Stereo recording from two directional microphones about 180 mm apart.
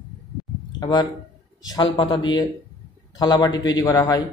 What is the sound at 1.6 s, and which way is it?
A man's voice, 20° left (ahead or behind).